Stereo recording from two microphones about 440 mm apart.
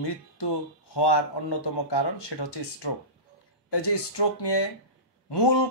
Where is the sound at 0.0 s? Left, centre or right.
Left.